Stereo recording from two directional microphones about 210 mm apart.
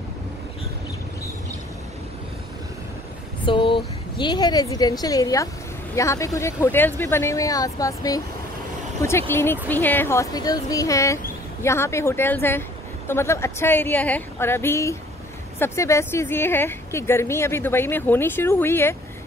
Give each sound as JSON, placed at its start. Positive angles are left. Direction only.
{"t": 3.4, "sound": "a woman's voice", "side_deg": 25}